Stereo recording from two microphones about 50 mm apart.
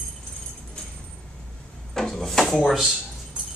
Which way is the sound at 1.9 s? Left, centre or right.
Centre.